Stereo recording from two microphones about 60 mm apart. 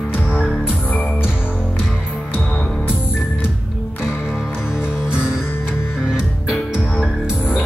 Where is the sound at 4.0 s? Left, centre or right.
Centre.